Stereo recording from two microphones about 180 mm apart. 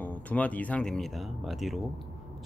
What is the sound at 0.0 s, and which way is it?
Speech, 10° left (ahead or behind).